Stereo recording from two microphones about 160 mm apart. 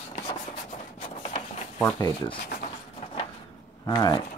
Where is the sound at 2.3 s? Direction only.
85° left.